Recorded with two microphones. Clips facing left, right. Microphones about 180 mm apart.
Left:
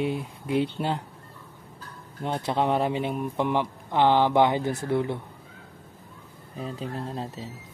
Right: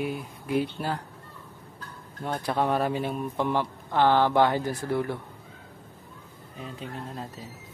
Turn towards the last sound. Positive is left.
turn(degrees=30)  # may be behind; listen again after turning